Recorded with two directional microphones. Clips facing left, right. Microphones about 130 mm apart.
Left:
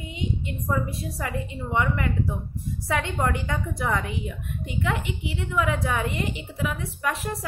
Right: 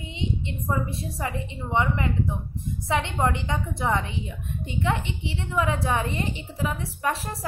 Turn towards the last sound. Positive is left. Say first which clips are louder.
# right 1 dB
turn(degrees=-30)  # may be behind; listen again after turning